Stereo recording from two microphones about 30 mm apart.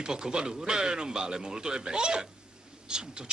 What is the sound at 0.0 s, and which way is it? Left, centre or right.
Speech, right.